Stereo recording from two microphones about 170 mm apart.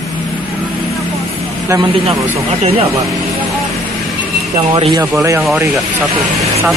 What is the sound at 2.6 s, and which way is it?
Speech, 35° right (ahead or behind).